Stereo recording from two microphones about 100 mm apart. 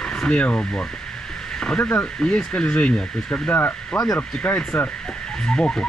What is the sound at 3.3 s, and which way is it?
Speech, 20° left (ahead or behind).